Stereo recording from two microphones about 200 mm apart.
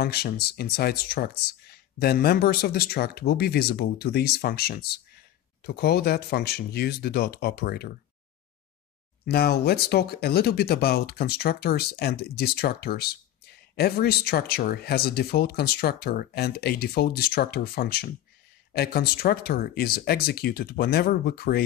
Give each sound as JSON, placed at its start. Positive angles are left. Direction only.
{"t": 0.0, "sound": "speech", "side_deg": 50}
{"t": 9.2, "sound": "speech", "side_deg": 50}